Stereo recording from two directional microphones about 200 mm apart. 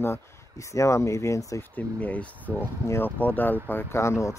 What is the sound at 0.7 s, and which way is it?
Speech, 15° left (ahead or behind).